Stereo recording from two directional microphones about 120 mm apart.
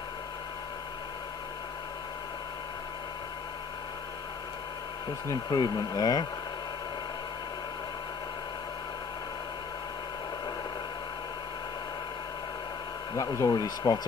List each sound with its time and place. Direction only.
5.3 s speech: 30° left (ahead or behind)
13.1 s speech: 30° left (ahead or behind)